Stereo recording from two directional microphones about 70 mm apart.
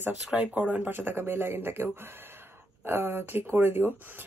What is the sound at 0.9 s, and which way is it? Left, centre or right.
Speech, right.